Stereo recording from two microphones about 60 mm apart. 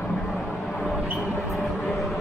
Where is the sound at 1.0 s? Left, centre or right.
Centre.